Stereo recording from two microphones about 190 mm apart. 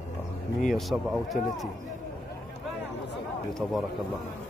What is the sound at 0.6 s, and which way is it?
Speech, centre (ahead or behind).